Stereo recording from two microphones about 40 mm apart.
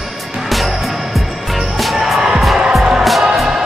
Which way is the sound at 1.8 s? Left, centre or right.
Centre.